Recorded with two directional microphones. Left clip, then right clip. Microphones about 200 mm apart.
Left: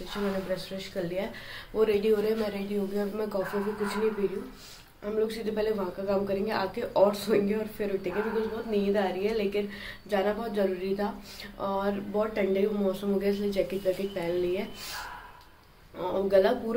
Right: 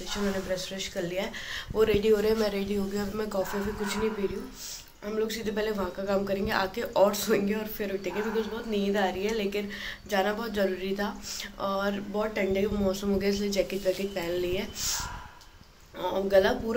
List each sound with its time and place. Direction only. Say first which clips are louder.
0.1 s speech: right 1 dB; 5° left (ahead or behind)
2.2 s a woman's voice: right 3 dB; 15° right (ahead or behind)
3.0 s speech: even; centre (ahead or behind)
5.0 s speech: left 1 dB; centre (ahead or behind)
16.0 s speech: even; 5° left (ahead or behind)